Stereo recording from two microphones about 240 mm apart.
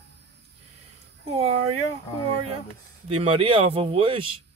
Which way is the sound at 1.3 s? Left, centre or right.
Right.